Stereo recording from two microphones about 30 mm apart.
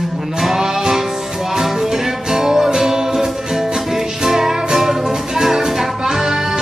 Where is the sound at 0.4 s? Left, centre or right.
Centre.